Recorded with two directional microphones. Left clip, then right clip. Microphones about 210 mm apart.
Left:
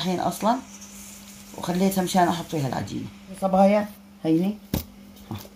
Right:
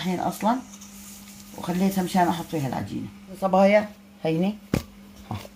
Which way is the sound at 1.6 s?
15° left (ahead or behind).